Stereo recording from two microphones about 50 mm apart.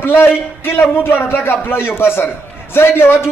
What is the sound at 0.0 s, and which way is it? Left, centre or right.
A man's voice, left.